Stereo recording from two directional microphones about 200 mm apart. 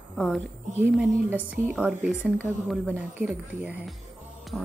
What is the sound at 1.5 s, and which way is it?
Speech, 5° right (ahead or behind).